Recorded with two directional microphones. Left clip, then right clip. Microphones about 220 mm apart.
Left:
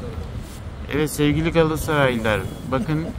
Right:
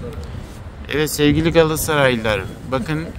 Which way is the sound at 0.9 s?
30° right (ahead or behind).